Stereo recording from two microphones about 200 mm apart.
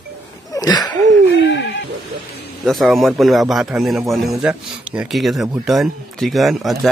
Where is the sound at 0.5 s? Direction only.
20° left (ahead or behind).